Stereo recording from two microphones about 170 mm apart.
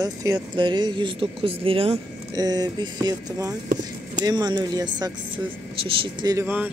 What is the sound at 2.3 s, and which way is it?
Speech, 20° right (ahead or behind).